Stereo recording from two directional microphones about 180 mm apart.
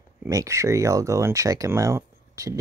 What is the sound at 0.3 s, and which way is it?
Speech, 15° right (ahead or behind).